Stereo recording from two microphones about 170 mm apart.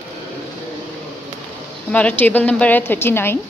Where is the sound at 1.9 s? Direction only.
10° left (ahead or behind).